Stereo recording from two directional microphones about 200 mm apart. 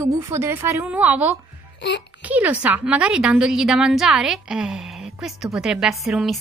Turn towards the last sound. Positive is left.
turn(degrees=0)  # may be behind; listen again after turning